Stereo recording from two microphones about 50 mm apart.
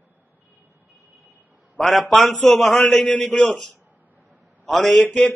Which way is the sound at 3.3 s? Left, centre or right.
Centre.